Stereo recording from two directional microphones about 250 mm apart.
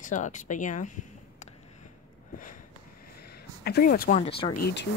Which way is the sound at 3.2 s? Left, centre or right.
Left.